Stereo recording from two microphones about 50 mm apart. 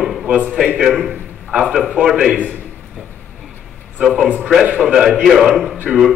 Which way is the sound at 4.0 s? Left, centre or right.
Centre.